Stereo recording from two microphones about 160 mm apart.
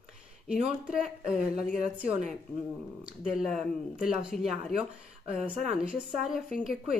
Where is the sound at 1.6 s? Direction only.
40° right (ahead or behind).